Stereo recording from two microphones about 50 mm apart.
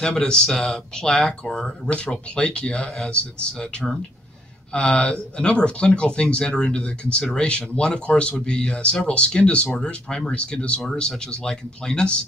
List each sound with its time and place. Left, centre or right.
0.0 s speech: centre
4.7 s speech: left